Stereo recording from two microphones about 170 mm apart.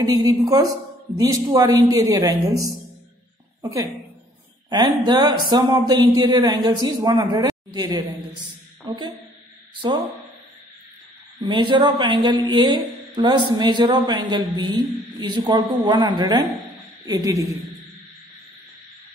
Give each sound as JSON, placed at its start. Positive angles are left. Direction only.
{"t": 0.0, "sound": "speech", "side_deg": -25}
{"t": 4.6, "sound": "a woman's voice", "side_deg": -25}
{"t": 11.4, "sound": "speech", "side_deg": -25}